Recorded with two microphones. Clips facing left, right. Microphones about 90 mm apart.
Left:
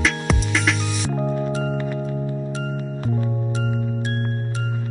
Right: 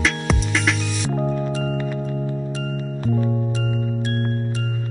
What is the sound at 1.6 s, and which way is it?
Music, 25° left (ahead or behind).